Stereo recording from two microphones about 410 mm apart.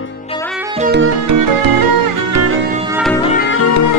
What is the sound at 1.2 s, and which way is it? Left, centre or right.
Music, right.